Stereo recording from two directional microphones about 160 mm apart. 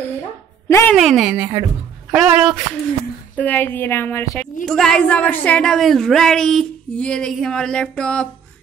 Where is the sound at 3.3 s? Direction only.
10° left (ahead or behind).